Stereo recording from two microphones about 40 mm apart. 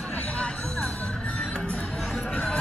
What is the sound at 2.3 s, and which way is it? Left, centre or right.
Music, left.